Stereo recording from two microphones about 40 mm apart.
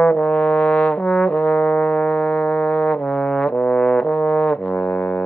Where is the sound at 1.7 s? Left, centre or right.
Left.